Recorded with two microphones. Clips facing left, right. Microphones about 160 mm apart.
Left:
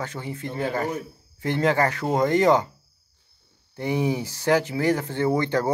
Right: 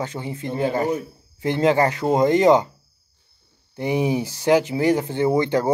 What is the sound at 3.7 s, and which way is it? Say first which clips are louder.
Speech: right 3 dB; 20° right (ahead or behind).